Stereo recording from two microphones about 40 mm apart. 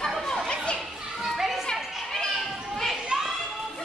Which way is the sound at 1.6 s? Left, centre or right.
Centre.